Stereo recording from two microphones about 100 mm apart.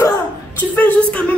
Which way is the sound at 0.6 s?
15° left (ahead or behind).